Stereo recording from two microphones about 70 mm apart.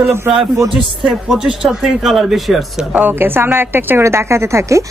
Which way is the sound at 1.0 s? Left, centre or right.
Centre.